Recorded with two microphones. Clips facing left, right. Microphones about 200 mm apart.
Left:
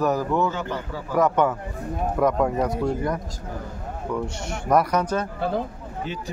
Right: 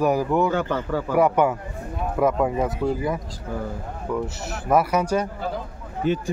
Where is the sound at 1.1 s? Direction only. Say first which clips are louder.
Right 1 dB; 10° right (ahead or behind).